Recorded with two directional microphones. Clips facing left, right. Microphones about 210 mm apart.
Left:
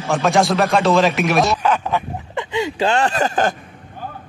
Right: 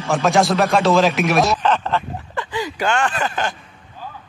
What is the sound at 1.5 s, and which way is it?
Speech, 10° left (ahead or behind).